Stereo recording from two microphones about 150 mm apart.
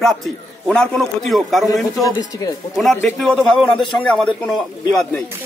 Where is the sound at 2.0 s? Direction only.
25° left (ahead or behind).